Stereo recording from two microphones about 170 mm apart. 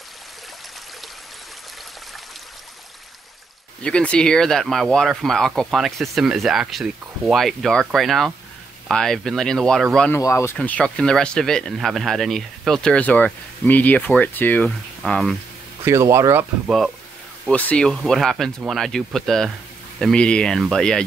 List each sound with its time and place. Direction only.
3.8 s speech: 5° left (ahead or behind)
10.1 s speech: 15° left (ahead or behind)
15.8 s speech: 15° right (ahead or behind)
16.6 s speech: centre (ahead or behind)